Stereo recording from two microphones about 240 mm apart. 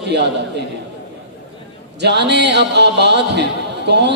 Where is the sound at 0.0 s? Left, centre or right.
Right.